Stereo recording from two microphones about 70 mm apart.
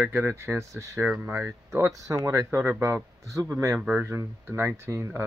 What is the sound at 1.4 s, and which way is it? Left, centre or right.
Speech, right.